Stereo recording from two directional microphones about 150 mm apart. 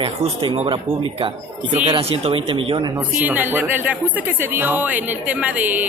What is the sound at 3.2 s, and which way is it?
Speech, 10° right (ahead or behind).